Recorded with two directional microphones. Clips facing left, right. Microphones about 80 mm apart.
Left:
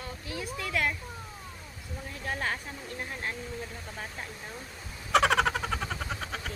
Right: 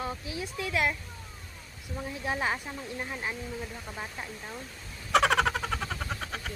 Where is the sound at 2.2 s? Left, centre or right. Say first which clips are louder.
Right 2 dB; centre.